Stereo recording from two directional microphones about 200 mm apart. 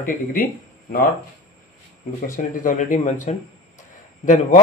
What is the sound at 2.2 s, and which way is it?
Speech, 40° left (ahead or behind).